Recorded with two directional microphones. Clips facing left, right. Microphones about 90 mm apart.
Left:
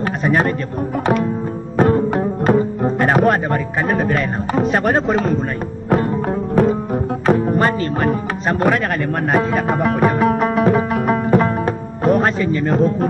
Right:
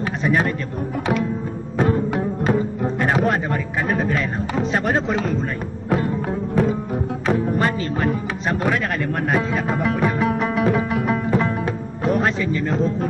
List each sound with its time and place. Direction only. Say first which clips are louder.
0.0 s speech: left 3 dB; 45° left (ahead or behind)
1.8 s music: left 5 dB; 45° left (ahead or behind)